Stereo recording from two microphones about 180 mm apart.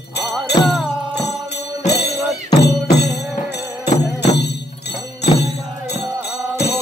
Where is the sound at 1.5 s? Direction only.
65° left (ahead or behind).